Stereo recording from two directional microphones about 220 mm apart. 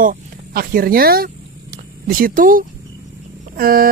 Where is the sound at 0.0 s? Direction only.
40° right (ahead or behind).